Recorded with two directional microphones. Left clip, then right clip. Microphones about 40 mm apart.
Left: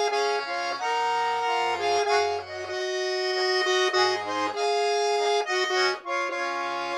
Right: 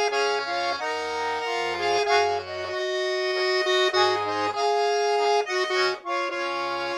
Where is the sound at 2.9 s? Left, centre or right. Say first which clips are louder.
Right 1 dB; centre.